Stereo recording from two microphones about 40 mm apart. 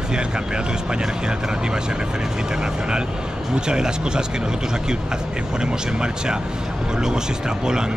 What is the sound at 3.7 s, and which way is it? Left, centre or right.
Speech, centre.